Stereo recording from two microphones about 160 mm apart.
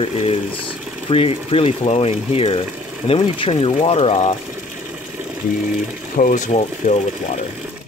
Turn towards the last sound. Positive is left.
turn(degrees=45)  # may be behind; listen again after turning